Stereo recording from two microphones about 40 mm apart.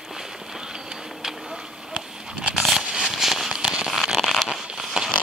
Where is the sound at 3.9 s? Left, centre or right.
Centre.